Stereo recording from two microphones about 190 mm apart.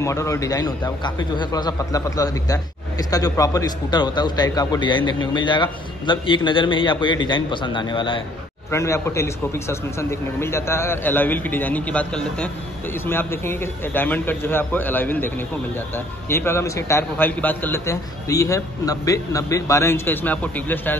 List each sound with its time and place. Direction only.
0.0 s a man's voice: 15° left (ahead or behind)
8.7 s a man's voice: 15° left (ahead or behind)